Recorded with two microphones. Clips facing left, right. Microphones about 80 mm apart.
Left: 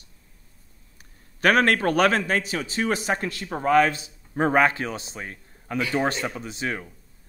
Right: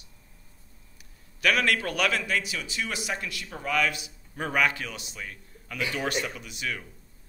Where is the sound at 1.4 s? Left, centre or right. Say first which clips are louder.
Left 6 dB; left.